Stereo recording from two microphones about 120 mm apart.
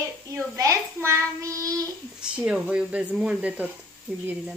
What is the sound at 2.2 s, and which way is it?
Speech, 10° right (ahead or behind).